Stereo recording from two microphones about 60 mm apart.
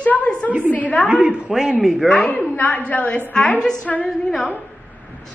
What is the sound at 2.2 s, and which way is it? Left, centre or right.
Speech, left.